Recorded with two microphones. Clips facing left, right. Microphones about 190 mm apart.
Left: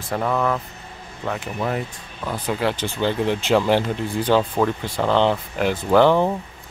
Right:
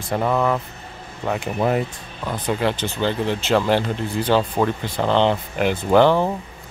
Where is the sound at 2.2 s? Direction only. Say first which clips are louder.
Right 1 dB; 5° left (ahead or behind).